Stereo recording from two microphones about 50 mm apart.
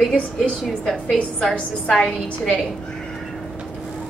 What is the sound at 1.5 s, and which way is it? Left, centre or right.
A woman's voice, left.